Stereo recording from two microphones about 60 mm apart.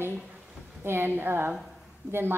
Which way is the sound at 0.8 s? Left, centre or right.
Right.